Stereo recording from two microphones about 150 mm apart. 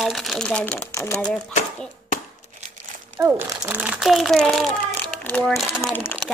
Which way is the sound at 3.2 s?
15° right (ahead or behind).